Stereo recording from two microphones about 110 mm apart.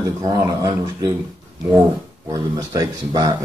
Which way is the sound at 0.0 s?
30° right (ahead or behind).